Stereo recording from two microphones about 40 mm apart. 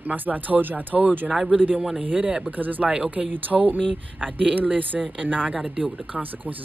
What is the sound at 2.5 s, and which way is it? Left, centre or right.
Speech, right.